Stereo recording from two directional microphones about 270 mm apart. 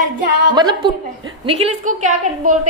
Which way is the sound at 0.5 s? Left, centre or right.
Centre.